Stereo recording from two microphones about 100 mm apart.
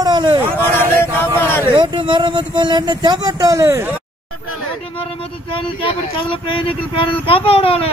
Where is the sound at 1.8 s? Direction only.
50° right (ahead or behind); by 3.8 s 30° right (ahead or behind).